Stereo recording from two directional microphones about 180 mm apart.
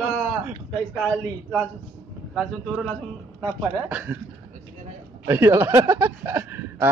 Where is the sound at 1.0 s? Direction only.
5° left (ahead or behind).